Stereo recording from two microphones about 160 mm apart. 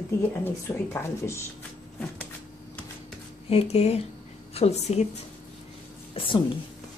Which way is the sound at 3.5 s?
40° left (ahead or behind).